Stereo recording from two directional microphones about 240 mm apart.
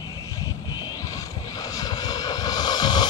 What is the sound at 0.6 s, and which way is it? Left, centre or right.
Vehicle, centre.